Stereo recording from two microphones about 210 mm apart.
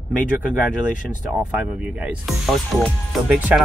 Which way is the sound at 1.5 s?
5° right (ahead or behind).